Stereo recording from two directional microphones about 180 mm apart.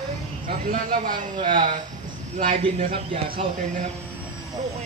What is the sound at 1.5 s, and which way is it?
Speech, 45° right (ahead or behind).